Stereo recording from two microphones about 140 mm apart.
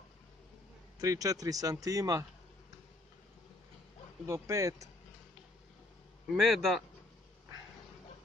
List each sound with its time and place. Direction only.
0.9 s speech: 25° right (ahead or behind)
4.3 s speech: 20° right (ahead or behind)
6.3 s a man's voice: centre (ahead or behind)